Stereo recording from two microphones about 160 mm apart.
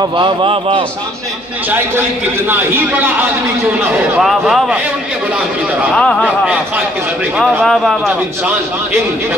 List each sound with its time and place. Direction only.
0.0 s a man's voice: 30° right (ahead or behind)
1.7 s a man's voice: 15° right (ahead or behind)
5.9 s speech: 5° left (ahead or behind)
7.6 s speech: centre (ahead or behind)